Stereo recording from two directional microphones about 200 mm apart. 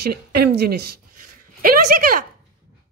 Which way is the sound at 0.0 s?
50° right (ahead or behind).